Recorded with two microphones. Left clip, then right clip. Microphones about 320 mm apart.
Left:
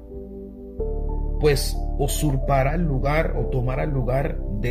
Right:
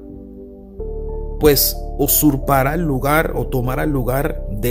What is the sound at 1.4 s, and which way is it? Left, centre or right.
Speech, right.